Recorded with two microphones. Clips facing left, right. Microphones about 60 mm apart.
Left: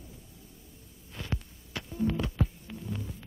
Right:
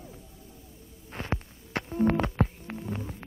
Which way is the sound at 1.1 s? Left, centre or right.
Right.